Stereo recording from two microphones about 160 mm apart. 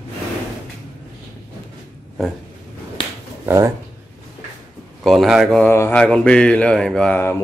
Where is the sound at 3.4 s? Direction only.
20° right (ahead or behind).